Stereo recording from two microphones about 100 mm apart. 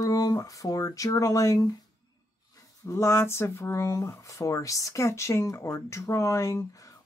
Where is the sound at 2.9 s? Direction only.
30° left (ahead or behind).